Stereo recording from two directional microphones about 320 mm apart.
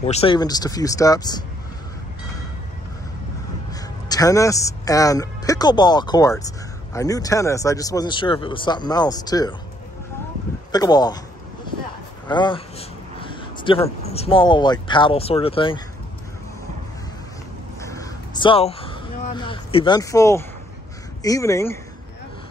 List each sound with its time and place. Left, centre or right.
0.0 s speech: centre
4.1 s speech: centre
10.7 s speech: centre
12.3 s speech: centre
17.7 s a sound: centre
21.2 s speech: centre